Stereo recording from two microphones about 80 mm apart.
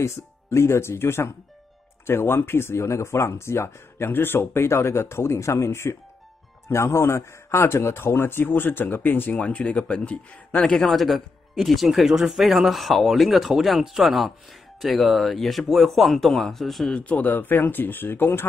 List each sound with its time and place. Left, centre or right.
0.0 s a man's voice: left; by 16.9 s centre
16.9 s speech: centre